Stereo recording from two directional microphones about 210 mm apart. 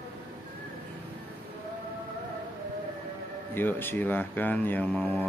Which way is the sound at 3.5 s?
10° left (ahead or behind).